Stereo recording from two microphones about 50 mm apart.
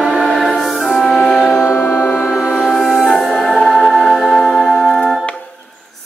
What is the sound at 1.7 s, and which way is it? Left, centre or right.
Music, left.